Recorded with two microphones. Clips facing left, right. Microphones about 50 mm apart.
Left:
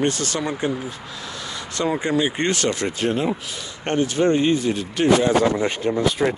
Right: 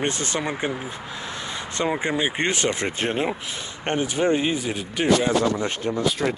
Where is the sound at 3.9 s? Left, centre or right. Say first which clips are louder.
Left 3 dB; centre.